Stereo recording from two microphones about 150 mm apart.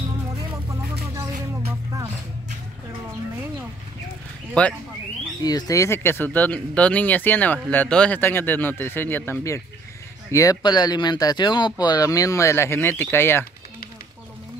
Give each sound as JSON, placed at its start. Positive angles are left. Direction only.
{"t": 4.6, "sound": "speech", "side_deg": 5}
{"t": 5.4, "sound": "speech", "side_deg": 25}